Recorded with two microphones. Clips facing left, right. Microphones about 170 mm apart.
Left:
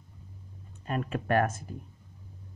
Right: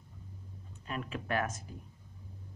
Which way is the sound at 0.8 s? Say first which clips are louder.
Left 7 dB; 45° left (ahead or behind).